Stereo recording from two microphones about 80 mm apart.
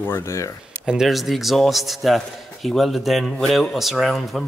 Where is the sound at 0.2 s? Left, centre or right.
Left.